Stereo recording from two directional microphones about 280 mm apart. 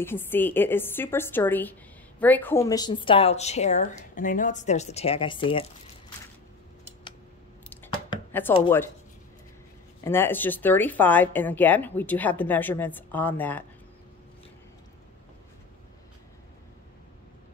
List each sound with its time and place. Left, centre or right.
0.0 s a woman's voice: centre
8.3 s speech: centre
10.0 s a woman's voice: centre